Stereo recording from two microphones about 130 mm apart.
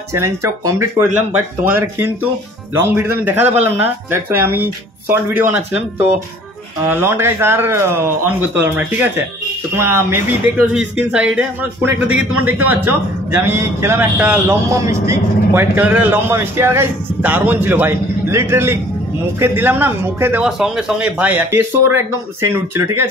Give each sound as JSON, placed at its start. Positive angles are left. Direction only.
{"t": 0.1, "sound": "speech", "side_deg": -20}
{"t": 3.4, "sound": "speech", "side_deg": -55}
{"t": 3.7, "sound": "speech", "side_deg": -15}
{"t": 10.7, "sound": "speech", "side_deg": -5}
{"t": 14.7, "sound": "speech", "side_deg": -25}
{"t": 20.4, "sound": "speech", "side_deg": -5}